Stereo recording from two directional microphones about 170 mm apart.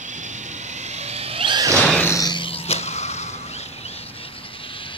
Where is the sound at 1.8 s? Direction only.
10° left (ahead or behind); by 3.3 s 40° left (ahead or behind).